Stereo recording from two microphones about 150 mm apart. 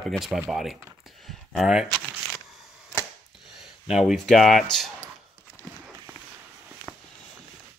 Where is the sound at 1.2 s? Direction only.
Centre (ahead or behind).